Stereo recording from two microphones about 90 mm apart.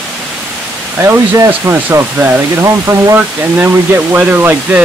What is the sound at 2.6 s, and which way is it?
Speech, 30° right (ahead or behind).